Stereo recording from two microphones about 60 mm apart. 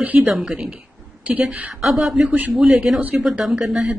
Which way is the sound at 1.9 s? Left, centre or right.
Centre.